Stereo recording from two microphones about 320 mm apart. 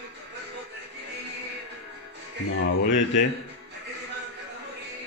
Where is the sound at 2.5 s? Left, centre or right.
Left.